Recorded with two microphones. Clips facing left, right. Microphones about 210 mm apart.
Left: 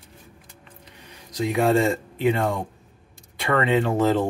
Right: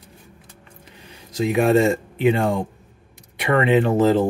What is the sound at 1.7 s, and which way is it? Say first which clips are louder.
Speech: right 4 dB; 25° right (ahead or behind).